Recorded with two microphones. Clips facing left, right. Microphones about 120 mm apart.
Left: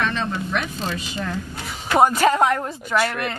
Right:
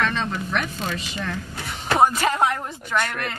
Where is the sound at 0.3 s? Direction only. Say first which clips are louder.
Left 1 dB; 30° left (ahead or behind).